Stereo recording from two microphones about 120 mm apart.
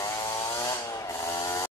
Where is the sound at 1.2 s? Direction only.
30° left (ahead or behind).